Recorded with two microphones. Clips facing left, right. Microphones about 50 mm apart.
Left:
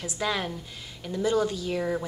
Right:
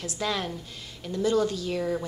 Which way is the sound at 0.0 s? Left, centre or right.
Centre.